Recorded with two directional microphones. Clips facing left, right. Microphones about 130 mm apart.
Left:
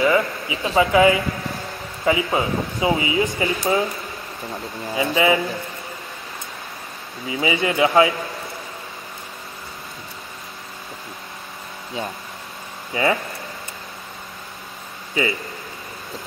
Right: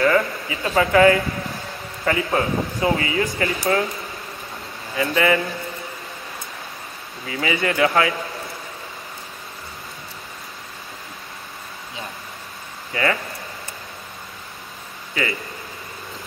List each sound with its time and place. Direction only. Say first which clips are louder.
0.0 s speech: even; 10° left (ahead or behind)
4.9 s speech: left 1 dB; 15° left (ahead or behind)
7.2 s speech: left 1 dB; 15° left (ahead or behind)
12.9 s speech: left 2 dB; 20° left (ahead or behind)